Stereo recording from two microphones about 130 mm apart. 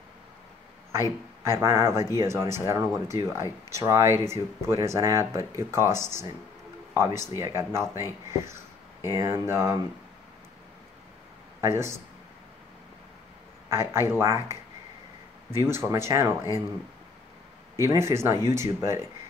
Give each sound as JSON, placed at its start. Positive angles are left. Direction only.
{"t": 0.9, "sound": "a man's voice", "side_deg": -20}
{"t": 11.6, "sound": "speech", "side_deg": -20}
{"t": 13.7, "sound": "speech", "side_deg": -20}
{"t": 17.7, "sound": "speech", "side_deg": -20}